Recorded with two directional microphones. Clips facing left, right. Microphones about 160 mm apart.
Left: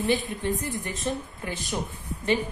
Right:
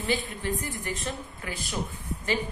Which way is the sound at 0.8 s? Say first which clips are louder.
Left 3 dB; 20° left (ahead or behind).